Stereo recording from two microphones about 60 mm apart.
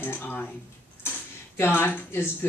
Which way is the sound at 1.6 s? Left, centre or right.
Left.